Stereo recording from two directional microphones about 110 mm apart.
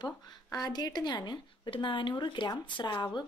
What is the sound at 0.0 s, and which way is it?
Speech, 40° left (ahead or behind).